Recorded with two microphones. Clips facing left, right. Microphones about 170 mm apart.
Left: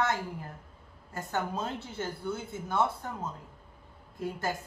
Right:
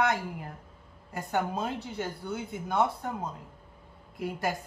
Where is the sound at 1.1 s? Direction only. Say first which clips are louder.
Right 3 dB; 15° right (ahead or behind).